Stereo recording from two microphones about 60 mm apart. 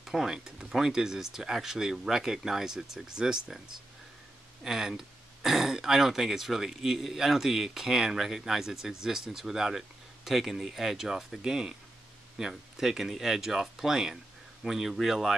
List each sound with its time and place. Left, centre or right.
0.0 s speech: centre